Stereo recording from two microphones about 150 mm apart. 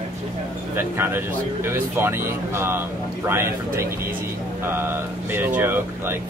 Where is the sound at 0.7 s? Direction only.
15° right (ahead or behind).